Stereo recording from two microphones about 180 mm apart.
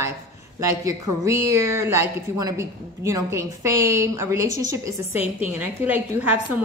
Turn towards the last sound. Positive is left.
turn(degrees=-10)  # may be behind; listen again after turning